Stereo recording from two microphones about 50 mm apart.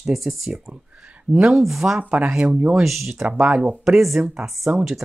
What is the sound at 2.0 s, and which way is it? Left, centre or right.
Speech, right.